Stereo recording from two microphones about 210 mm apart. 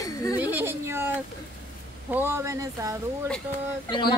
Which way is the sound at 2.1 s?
10° right (ahead or behind).